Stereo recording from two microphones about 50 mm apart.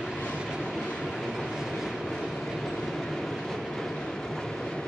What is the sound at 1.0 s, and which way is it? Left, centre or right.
Train, centre.